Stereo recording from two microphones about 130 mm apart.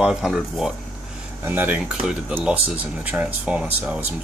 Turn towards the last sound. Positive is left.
turn(degrees=-10)  # may be behind; listen again after turning